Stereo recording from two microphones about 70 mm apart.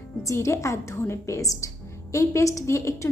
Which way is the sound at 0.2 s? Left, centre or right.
Left.